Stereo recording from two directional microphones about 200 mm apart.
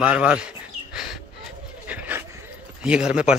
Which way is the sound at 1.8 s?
10° right (ahead or behind).